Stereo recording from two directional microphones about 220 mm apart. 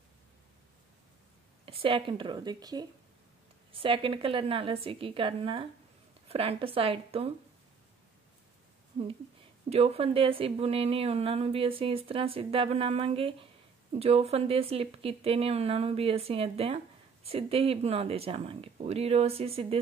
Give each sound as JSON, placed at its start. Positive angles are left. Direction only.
{"t": 1.7, "sound": "speech", "side_deg": -25}
{"t": 9.7, "sound": "speech", "side_deg": -25}